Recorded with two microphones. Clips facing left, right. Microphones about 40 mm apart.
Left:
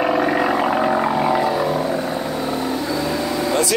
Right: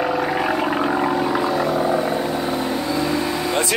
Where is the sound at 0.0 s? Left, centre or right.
Left.